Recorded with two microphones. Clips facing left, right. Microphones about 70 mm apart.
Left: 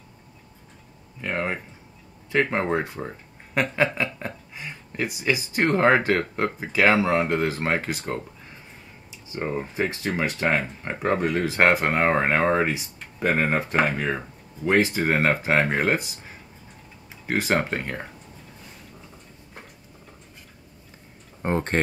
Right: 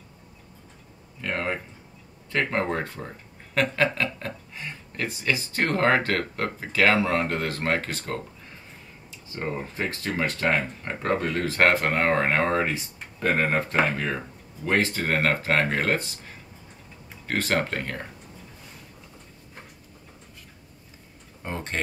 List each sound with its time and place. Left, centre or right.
1.2 s speech: centre
9.3 s speech: centre
21.4 s speech: left